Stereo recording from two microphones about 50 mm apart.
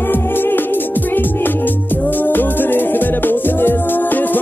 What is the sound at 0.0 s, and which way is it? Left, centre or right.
Music, left.